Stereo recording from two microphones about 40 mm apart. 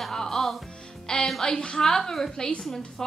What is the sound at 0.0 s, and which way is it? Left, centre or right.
Music, centre.